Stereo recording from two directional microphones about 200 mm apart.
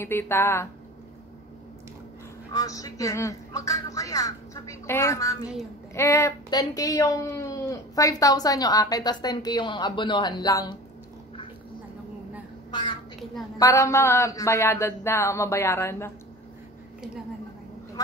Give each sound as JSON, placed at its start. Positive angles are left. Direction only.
{"t": 0.0, "sound": "speech", "side_deg": 10}
{"t": 2.5, "sound": "speech", "side_deg": 15}
{"t": 13.6, "sound": "speech", "side_deg": 15}